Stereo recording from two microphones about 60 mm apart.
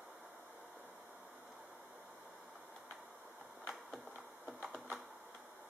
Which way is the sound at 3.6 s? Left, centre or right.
Centre.